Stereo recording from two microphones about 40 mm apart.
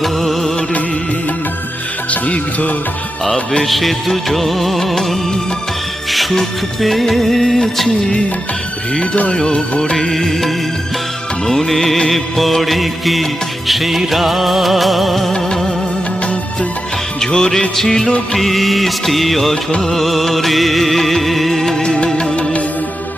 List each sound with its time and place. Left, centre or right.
0.0 s music: centre
2.0 s music: left
3.6 s music: centre
6.8 s music of bollywood: centre
9.0 s speech: left
9.4 s music: left
10.0 s music of bollywood: centre
12.1 s music: centre
17.2 s music: centre
17.7 s music of bollywood: centre
18.3 s music: centre
19.5 s music: left
19.9 s music: centre
21.8 s music: left